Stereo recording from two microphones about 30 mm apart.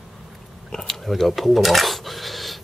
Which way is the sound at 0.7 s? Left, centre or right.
Centre.